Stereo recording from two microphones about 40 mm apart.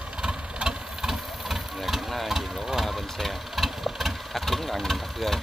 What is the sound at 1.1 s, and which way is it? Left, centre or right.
Engine, centre.